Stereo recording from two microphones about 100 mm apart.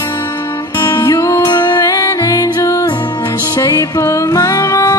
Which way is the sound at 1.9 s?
35° left (ahead or behind).